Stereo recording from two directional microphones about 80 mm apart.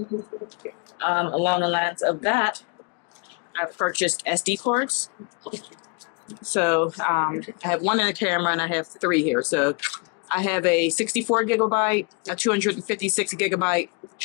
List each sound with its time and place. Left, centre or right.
0.9 s speech: left
3.9 s speech: centre
6.5 s speech: left